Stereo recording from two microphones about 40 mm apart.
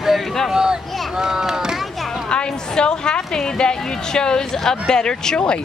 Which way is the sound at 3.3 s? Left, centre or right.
Centre.